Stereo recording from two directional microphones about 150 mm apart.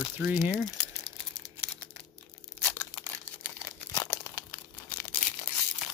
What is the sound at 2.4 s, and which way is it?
Tearing, 15° left (ahead or behind).